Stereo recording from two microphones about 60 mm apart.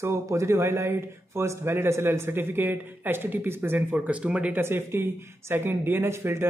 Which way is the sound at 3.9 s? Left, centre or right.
Right.